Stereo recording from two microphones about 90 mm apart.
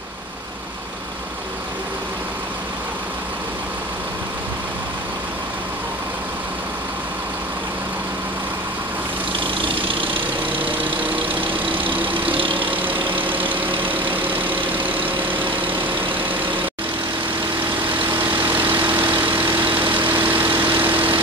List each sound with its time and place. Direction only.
9.4 s vehicle: 75° right (ahead or behind)
14.1 s vehicle: 20° right (ahead or behind)
14.7 s vehicle: 80° right
18.5 s vehicle: 25° right (ahead or behind)
19.6 s vehicle: 70° right (ahead or behind)
19.9 s vehicle: 25° right (ahead or behind)